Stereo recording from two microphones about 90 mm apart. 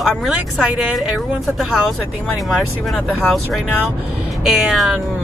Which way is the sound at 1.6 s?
5° right (ahead or behind).